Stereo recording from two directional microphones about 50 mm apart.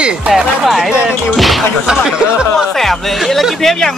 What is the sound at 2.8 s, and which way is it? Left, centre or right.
Speech, centre.